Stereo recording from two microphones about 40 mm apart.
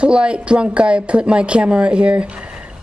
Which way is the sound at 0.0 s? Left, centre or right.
Right.